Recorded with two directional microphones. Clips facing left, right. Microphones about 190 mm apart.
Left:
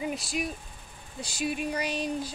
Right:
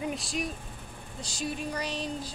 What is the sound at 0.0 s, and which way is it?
Speech, 5° left (ahead or behind).